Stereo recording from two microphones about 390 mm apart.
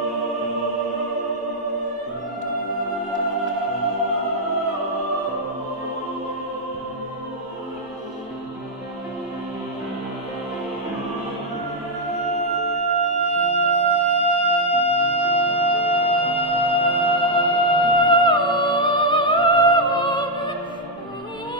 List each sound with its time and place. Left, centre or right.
12.2 s music: centre